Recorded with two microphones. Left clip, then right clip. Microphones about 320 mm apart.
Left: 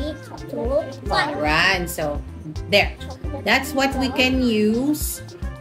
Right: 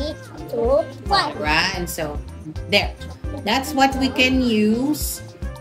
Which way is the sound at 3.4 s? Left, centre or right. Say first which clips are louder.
Right 1 dB; centre.